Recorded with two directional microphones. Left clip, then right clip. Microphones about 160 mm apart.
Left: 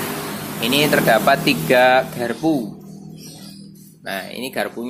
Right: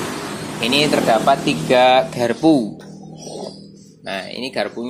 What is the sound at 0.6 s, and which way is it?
Speech, centre (ahead or behind).